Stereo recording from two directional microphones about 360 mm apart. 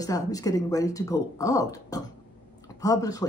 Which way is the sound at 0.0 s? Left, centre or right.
Centre.